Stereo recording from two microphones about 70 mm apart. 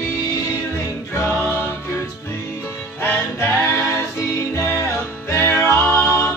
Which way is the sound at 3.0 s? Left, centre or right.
Left.